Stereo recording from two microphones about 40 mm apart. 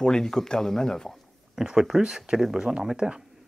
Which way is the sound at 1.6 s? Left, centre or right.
Centre.